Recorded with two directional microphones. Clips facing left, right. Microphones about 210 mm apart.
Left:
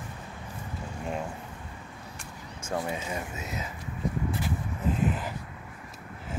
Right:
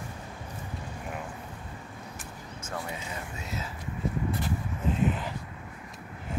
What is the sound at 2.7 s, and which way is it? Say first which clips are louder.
Speech: left 6 dB; 25° left (ahead or behind).